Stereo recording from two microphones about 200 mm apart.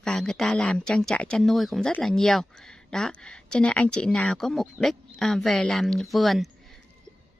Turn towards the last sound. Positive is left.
turn(degrees=0)  # may be behind; listen again after turning